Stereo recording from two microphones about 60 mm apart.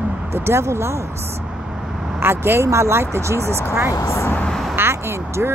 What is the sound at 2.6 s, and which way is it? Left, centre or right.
Speech, right.